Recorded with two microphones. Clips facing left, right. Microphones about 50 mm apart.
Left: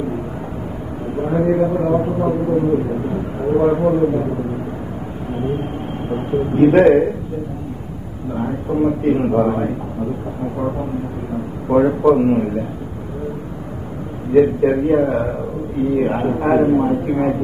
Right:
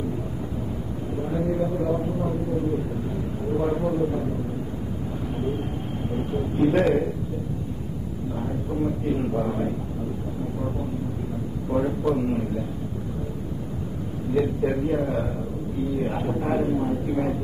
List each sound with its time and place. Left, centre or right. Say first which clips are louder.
1.1 s a sound: left 9 dB; left
5.3 s a man's voice: left 8 dB; left
8.4 s a man's voice: left 9 dB; left
11.7 s a man's voice: left 11 dB; left
14.3 s a man's voice: left 10 dB; left
15.8 s a man's voice: left 9 dB; left